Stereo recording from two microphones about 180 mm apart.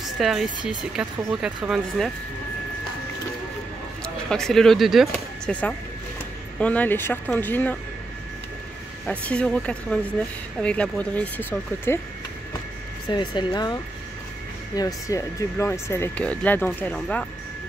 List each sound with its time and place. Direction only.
0.0 s a sound: centre (ahead or behind)
0.7 s speech: 5° right (ahead or behind)
4.3 s speech: 5° left (ahead or behind)
9.0 s speech: 5° left (ahead or behind)
13.1 s speech: 25° left (ahead or behind)
14.8 s speech: 20° left (ahead or behind)